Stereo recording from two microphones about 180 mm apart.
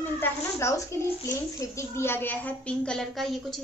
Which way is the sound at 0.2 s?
15° left (ahead or behind).